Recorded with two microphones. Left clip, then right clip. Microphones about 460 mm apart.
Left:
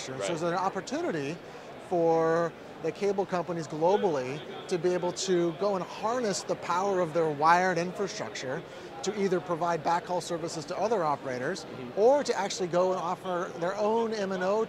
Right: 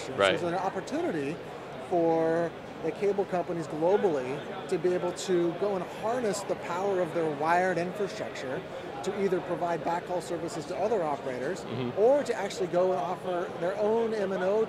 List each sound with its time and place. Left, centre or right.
0.4 s speech: left